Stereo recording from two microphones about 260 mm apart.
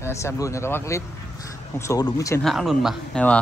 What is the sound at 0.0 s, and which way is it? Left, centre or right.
Speech, centre.